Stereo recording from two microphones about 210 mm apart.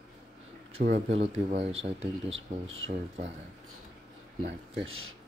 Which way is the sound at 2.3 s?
65° right (ahead or behind).